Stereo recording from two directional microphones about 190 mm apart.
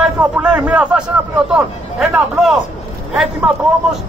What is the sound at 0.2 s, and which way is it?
Speech, 5° right (ahead or behind).